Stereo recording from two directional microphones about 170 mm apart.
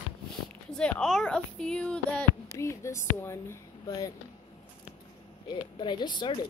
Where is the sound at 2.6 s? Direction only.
15° left (ahead or behind).